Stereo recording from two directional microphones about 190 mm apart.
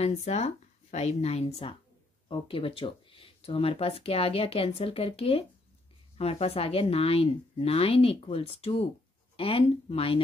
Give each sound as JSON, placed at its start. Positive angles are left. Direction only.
{"t": 0.0, "sound": "speech", "side_deg": 35}